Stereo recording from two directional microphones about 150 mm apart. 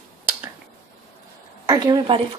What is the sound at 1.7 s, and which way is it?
Speech, 25° right (ahead or behind).